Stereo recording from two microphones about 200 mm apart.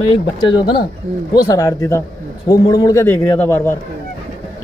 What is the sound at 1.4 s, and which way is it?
A man's voice, 15° left (ahead or behind).